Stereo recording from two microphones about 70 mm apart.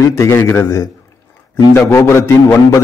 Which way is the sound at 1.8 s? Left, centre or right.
Left.